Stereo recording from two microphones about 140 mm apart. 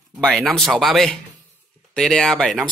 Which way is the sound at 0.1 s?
5° left (ahead or behind).